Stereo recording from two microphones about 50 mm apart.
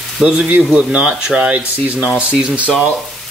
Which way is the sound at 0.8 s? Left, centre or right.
Right.